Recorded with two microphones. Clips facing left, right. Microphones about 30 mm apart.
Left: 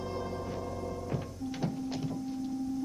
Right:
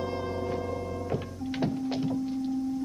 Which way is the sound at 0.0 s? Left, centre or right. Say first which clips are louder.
Right 5 dB; right.